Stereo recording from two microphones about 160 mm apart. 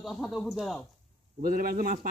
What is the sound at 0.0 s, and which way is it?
Speech, centre (ahead or behind).